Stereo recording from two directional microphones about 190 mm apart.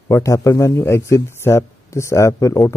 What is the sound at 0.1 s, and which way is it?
A man's voice, 15° left (ahead or behind).